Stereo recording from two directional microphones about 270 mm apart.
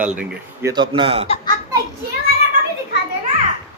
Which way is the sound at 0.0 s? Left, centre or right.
Centre.